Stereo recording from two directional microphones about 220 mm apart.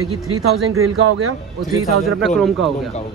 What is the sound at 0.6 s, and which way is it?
Speech, 70° right (ahead or behind).